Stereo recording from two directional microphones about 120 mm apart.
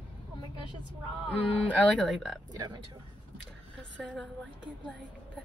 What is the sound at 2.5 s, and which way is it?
Speech, 35° right (ahead or behind).